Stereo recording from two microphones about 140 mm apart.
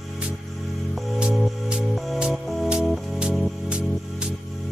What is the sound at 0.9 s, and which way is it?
Music, 5° right (ahead or behind).